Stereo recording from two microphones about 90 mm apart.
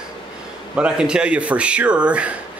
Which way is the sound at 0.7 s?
10° right (ahead or behind).